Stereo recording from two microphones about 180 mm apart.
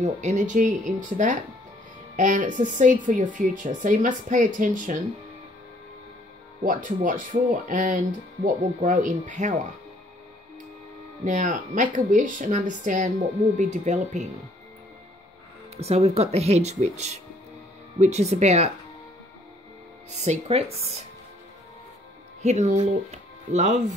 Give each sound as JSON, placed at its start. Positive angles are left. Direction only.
{"t": 0.0, "sound": "speech", "side_deg": -40}
{"t": 6.6, "sound": "speech", "side_deg": -45}
{"t": 11.2, "sound": "speech", "side_deg": -45}
{"t": 15.7, "sound": "speech", "side_deg": -35}
{"t": 20.1, "sound": "speech", "side_deg": -40}
{"t": 22.4, "sound": "speech", "side_deg": -40}